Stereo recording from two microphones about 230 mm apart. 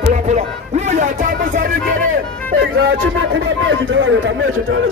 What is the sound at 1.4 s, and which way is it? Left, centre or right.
Music, right.